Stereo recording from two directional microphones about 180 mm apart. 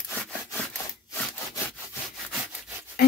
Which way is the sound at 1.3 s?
15° left (ahead or behind).